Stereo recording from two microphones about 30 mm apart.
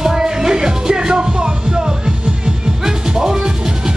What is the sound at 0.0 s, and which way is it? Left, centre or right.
Music, centre.